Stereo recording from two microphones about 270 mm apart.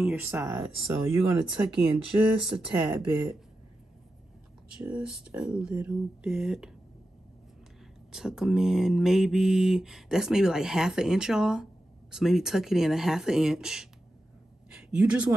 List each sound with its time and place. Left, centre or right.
0.0 s mantra: centre
4.7 s mantra: centre
8.1 s mantra: centre
14.7 s a sound: centre